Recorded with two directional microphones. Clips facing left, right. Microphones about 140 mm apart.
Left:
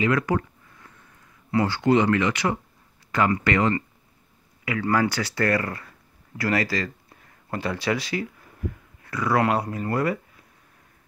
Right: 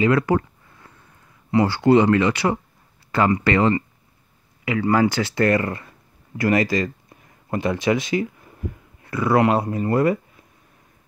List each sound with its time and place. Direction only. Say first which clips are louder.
0.0 s speech: right 4 dB; 30° right (ahead or behind)
1.5 s speech: right 4 dB; 30° right (ahead or behind)